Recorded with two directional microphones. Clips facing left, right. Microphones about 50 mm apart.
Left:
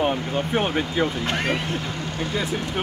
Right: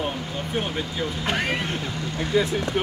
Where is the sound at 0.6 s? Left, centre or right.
Left.